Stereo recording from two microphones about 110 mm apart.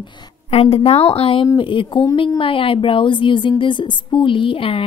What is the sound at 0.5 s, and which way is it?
Speech, 60° left (ahead or behind).